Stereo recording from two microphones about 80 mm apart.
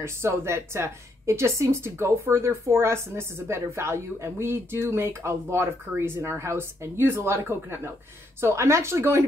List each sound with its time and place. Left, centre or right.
0.0 s a woman's voice: right